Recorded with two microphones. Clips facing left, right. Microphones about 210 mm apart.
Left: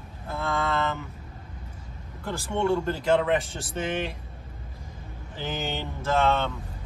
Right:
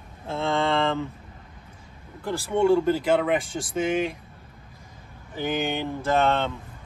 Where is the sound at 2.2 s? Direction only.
10° right (ahead or behind).